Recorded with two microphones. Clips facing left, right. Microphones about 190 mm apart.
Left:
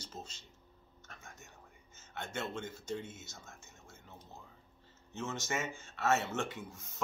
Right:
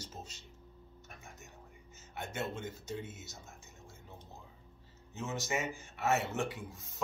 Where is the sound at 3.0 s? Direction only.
40° right (ahead or behind).